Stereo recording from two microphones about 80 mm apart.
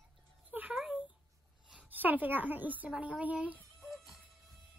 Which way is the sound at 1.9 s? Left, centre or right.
Right.